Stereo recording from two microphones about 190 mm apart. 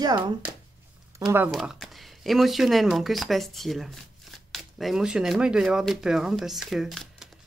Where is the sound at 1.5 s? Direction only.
Centre (ahead or behind).